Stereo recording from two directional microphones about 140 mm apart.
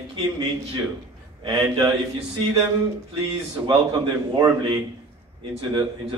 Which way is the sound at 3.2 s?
35° right (ahead or behind).